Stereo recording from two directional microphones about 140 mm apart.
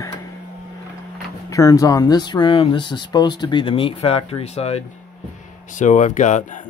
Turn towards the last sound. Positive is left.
turn(degrees=60)  # may be behind; listen again after turning